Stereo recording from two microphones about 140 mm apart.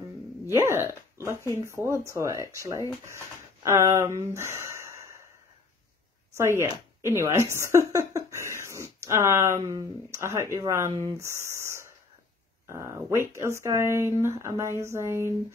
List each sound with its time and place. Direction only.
1.1 s a sound: 20° right (ahead or behind)
1.7 s speech: 20° right (ahead or behind)
6.3 s speech: 20° right (ahead or behind)
7.9 s cough: 20° right (ahead or behind)
9.0 s speech: 20° right (ahead or behind)